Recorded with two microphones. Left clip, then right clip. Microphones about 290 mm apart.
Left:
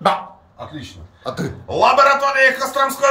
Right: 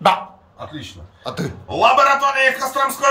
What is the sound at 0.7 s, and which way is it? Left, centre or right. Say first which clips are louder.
A man's voice: right 1 dB; centre.